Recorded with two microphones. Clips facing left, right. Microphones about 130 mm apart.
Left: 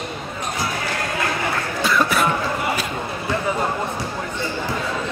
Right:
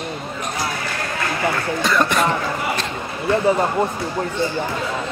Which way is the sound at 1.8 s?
5° left (ahead or behind).